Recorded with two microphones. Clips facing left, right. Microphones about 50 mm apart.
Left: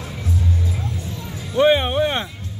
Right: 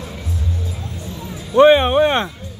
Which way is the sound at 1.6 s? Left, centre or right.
Right.